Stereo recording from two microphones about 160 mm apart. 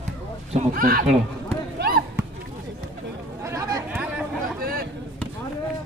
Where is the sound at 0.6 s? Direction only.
65° right (ahead or behind).